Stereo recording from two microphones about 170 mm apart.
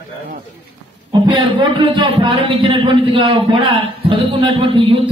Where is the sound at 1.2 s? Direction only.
25° right (ahead or behind).